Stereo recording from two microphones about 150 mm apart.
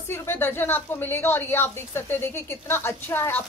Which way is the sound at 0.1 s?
15° left (ahead or behind).